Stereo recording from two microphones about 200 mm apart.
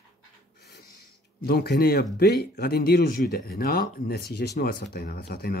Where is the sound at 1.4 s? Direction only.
50° left (ahead or behind).